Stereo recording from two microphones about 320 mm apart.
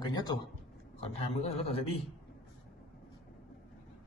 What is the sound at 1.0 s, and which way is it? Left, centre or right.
Speech, centre.